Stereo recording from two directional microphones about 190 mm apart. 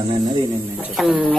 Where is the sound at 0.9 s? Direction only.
Centre (ahead or behind).